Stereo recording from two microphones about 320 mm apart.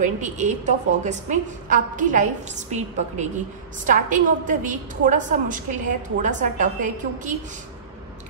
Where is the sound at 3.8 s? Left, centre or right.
Right.